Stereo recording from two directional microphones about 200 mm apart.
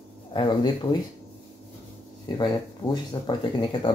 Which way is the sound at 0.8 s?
25° left (ahead or behind).